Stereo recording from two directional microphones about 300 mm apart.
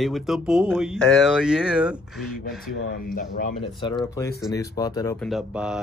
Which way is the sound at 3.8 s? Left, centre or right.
Centre.